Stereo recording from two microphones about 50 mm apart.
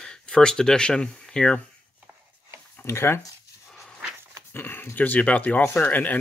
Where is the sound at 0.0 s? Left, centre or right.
Centre.